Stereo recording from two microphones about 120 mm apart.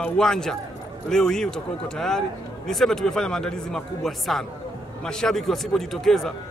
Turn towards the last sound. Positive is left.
turn(degrees=5)  # may be behind; listen again after turning